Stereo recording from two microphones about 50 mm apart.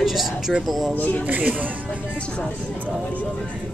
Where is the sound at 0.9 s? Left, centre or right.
Left.